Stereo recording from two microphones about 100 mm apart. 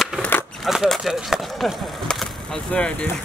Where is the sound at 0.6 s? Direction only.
Centre (ahead or behind).